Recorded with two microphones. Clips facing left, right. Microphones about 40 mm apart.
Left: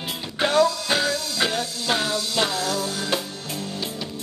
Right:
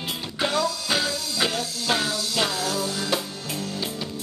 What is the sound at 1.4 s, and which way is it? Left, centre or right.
Music, centre.